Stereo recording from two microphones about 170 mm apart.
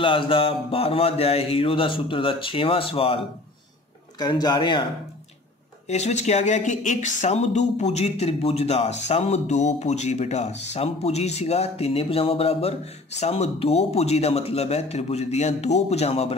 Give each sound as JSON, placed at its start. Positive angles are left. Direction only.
{"t": 0.0, "sound": "speech", "side_deg": 30}
{"t": 4.2, "sound": "a man's voice", "side_deg": 25}
{"t": 5.9, "sound": "speech", "side_deg": 40}